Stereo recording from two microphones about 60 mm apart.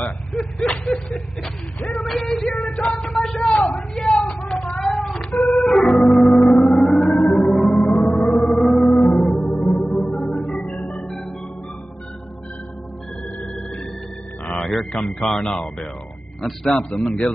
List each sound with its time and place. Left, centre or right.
0.3 s speech: centre
2.0 s female singing: centre
2.6 s a sound: centre
3.1 s a sound: centre
3.6 s a sound: centre
5.7 s organ: centre
6.6 s siren: centre
7.2 s music: centre
8.2 s music: centre
10.2 s organ: centre
14.6 s a sound: centre
16.4 s a man's voice: centre